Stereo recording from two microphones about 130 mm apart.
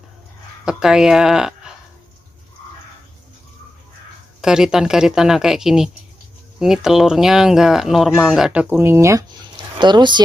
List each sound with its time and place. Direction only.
0.7 s speech: 5° right (ahead or behind)
4.4 s speech: 5° right (ahead or behind)
8.7 s speech: 20° right (ahead or behind)
9.6 s a sound: 35° right (ahead or behind)